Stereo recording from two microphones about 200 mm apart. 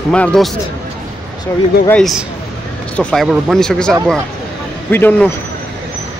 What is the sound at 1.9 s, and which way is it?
Speech, centre (ahead or behind).